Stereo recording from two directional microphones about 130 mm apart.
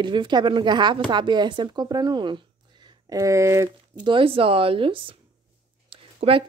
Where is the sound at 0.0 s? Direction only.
35° right (ahead or behind).